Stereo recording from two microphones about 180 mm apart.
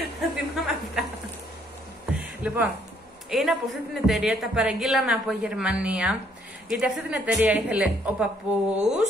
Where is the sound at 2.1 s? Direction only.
10° right (ahead or behind).